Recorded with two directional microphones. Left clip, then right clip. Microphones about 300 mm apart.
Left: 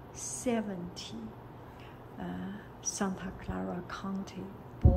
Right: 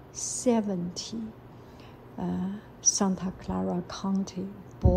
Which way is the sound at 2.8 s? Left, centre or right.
Centre.